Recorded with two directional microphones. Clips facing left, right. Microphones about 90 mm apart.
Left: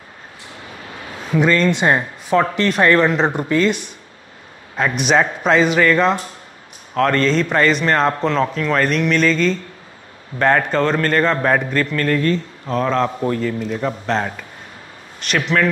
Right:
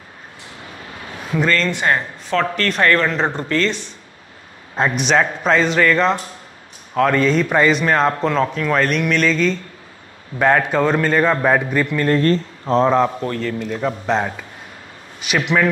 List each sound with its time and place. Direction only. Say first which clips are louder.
1.5 s speech: left 2 dB; 15° left (ahead or behind)
4.9 s a man's voice: left 2 dB; 5° left (ahead or behind); by 12.1 s 15° right (ahead or behind)
12.2 s speech: right 2 dB; 35° right (ahead or behind)
13.2 s a man's voice: left 3 dB; 5° left (ahead or behind); by 15.7 s 15° right (ahead or behind)